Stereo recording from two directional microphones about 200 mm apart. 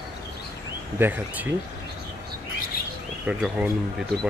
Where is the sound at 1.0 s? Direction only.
10° right (ahead or behind).